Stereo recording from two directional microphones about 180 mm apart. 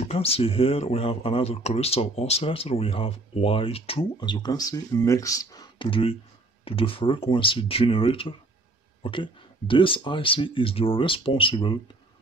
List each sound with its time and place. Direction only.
0.0 s speech: 35° left (ahead or behind)